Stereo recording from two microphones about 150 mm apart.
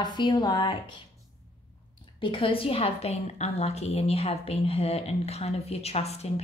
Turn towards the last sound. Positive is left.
turn(degrees=45)  # may be behind; listen again after turning